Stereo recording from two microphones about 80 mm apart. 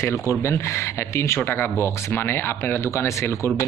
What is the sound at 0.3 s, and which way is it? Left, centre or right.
Speech, left.